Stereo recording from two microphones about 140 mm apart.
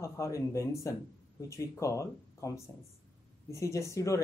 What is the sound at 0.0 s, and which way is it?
Speech, 20° left (ahead or behind).